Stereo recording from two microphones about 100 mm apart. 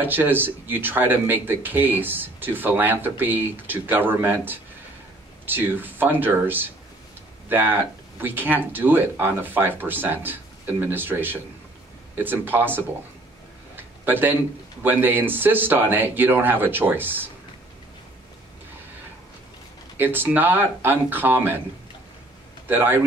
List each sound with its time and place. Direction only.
0.0 s speech: 20° right (ahead or behind)
13.7 s a sound: 20° right (ahead or behind)
14.8 s speech: 20° right (ahead or behind)
20.0 s speech: 20° right (ahead or behind)
22.7 s speech: 20° right (ahead or behind)